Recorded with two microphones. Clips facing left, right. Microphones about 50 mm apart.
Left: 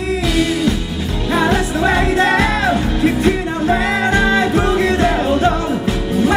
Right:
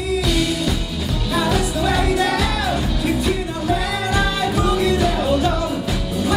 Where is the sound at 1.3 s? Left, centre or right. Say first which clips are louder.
Left 5 dB; left.